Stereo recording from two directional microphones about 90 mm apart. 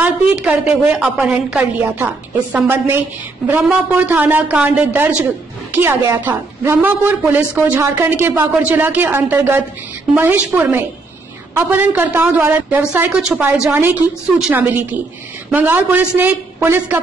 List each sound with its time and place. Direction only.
0.0 s a woman's voice: 15° right (ahead or behind)
13.7 s speech: 25° right (ahead or behind)